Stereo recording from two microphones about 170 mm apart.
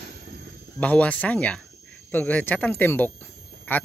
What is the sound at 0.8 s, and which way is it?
Speech, 10° left (ahead or behind).